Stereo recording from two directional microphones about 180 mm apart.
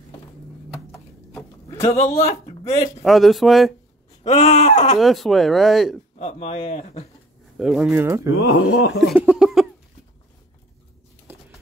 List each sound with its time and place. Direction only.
0.9 s a sound: 15° left (ahead or behind)
2.0 s speech: 40° left (ahead or behind)
3.0 s speech: centre (ahead or behind)
4.2 s speech: 40° left (ahead or behind)
4.9 s speech: centre (ahead or behind)
6.1 s speech: 35° left (ahead or behind)
7.5 s speech: 5° right (ahead or behind)
8.4 s speech: 60° left (ahead or behind)
9.2 s a sound: 5° right (ahead or behind)
11.3 s a sound: 10° right (ahead or behind)